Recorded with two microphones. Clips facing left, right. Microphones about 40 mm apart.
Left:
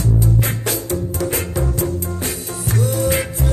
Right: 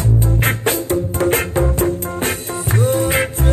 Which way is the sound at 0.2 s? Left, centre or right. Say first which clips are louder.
Right 2 dB; right.